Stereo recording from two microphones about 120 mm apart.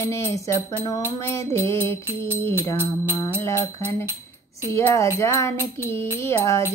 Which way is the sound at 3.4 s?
25° left (ahead or behind).